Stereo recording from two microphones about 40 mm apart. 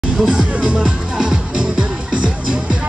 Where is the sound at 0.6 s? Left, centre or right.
Centre.